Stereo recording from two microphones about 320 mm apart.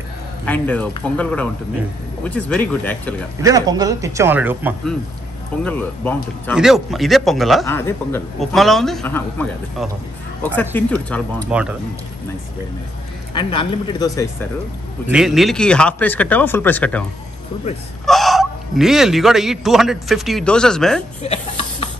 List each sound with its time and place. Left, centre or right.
0.5 s speech: centre
3.4 s a man's voice: centre
5.6 s speech: centre
13.3 s speech: centre
15.0 s speech: centre
18.0 s fowl: centre
21.2 s speech: centre